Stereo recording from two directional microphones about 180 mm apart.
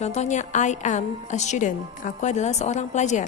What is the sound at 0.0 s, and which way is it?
A woman's voice, 40° left (ahead or behind).